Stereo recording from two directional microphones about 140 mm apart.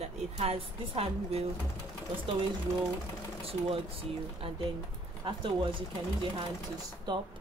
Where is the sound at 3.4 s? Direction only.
45° right (ahead or behind).